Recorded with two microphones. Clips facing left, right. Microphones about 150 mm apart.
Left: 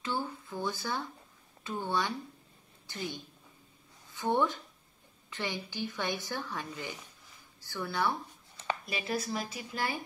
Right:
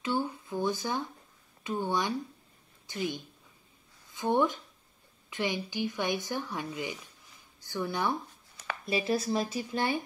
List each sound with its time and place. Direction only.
0.0 s a woman's voice: 15° right (ahead or behind)